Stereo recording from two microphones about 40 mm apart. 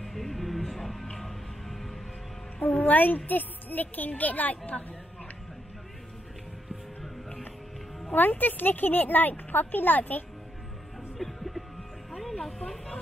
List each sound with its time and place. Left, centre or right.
0.0 s music: centre
2.8 s a sound: left
3.3 s speech: left
8.1 s speech: left
11.1 s music: centre
12.4 s a sound: centre